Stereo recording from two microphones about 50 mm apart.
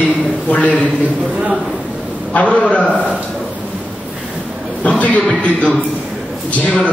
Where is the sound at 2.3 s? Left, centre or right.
Left.